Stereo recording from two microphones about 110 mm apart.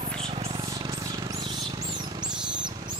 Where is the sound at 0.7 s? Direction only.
35° right (ahead or behind).